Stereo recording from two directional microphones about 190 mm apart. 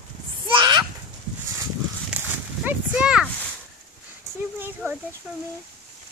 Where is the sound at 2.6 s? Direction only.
5° right (ahead or behind).